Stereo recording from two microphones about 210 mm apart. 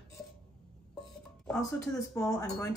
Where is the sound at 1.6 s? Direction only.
15° left (ahead or behind).